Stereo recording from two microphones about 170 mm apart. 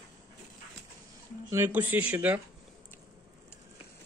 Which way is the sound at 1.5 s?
15° right (ahead or behind).